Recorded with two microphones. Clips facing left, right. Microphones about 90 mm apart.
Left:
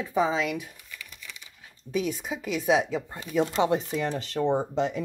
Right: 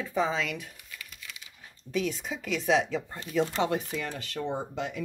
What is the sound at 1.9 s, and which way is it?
Speech, 10° left (ahead or behind).